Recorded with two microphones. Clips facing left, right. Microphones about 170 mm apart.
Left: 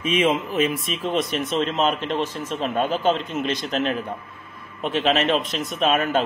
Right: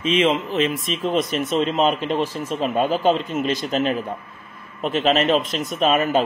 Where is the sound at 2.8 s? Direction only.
40° right (ahead or behind).